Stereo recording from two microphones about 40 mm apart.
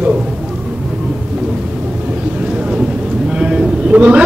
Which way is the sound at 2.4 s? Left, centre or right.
Right.